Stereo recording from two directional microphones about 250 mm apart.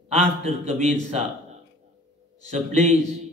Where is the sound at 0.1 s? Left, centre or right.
Right.